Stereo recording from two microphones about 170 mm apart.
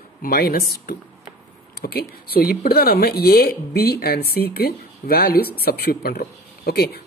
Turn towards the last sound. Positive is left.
turn(degrees=65)  # may be behind; listen again after turning